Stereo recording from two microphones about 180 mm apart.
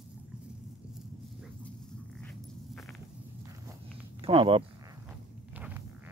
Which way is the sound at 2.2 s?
5° left (ahead or behind).